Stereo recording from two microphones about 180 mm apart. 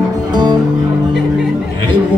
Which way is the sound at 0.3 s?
25° right (ahead or behind).